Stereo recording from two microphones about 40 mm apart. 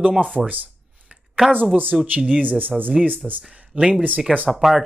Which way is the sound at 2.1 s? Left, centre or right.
Right.